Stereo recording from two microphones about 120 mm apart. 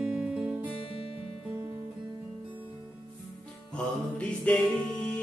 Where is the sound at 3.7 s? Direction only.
10° left (ahead or behind).